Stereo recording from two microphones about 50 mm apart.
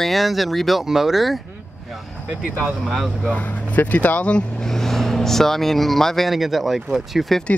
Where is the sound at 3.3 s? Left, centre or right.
Left.